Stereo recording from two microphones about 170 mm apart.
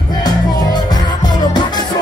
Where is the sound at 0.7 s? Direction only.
25° left (ahead or behind).